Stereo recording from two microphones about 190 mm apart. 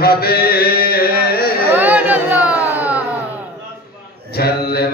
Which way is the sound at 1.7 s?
10° right (ahead or behind).